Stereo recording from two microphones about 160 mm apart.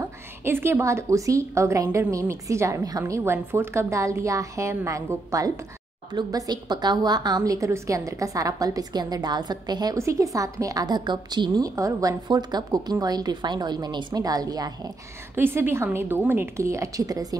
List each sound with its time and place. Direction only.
0.0 s a woman's voice: 15° right (ahead or behind)
15.3 s a woman's voice: 15° right (ahead or behind)